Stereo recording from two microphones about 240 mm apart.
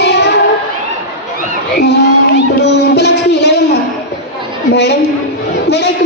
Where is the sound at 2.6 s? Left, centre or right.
Left.